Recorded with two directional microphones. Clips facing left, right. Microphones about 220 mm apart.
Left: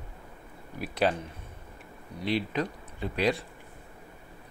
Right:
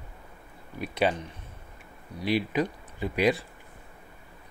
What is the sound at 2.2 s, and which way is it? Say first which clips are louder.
Speech: right 3 dB; 10° right (ahead or behind).